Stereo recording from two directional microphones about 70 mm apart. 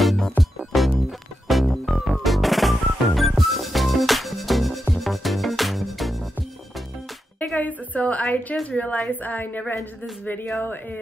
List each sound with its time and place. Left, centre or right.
0.0 s music: centre
7.3 s a sound: left
8.6 s a woman's voice: left